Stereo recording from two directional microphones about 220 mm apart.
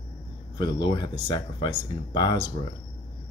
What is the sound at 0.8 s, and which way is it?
Speech, 20° left (ahead or behind).